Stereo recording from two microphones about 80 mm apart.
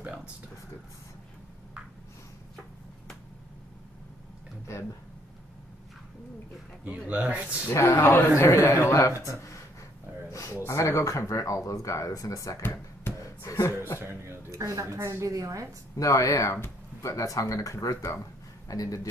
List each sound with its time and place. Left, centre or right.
6.8 s speech: centre
7.6 s speech: left
10.3 s a sound: left
10.7 s speech: left
13.9 s speech: right
16.0 s speech: left